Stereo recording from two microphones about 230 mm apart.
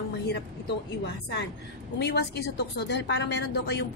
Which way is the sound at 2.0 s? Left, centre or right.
Left.